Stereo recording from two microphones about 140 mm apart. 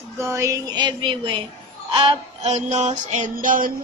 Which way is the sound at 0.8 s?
35° right (ahead or behind).